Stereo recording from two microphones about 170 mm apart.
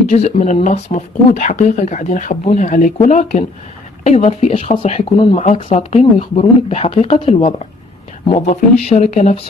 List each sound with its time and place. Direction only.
0.1 s speech: 45° left (ahead or behind)